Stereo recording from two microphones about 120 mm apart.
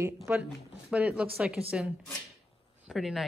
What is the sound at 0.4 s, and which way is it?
Speech, 10° right (ahead or behind).